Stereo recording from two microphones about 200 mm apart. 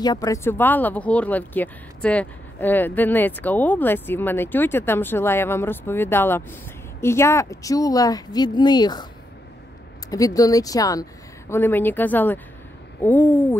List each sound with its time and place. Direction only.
0.0 s speech: 20° left (ahead or behind)
10.0 s speech: 15° left (ahead or behind)